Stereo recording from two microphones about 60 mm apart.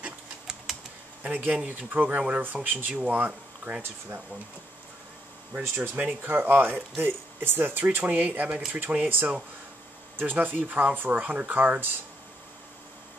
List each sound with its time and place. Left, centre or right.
1.2 s speech: right
5.5 s speech: right